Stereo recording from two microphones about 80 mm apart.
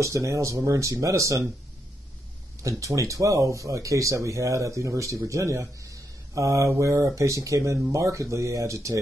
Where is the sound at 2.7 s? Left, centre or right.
Right.